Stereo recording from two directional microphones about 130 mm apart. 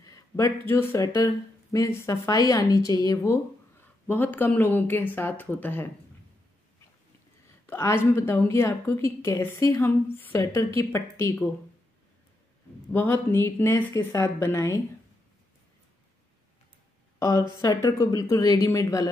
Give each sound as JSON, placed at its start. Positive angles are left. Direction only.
{"t": 0.0, "sound": "speech", "side_deg": 25}
{"t": 7.6, "sound": "speech", "side_deg": 20}
{"t": 12.9, "sound": "speech", "side_deg": 15}
{"t": 17.2, "sound": "speech", "side_deg": 25}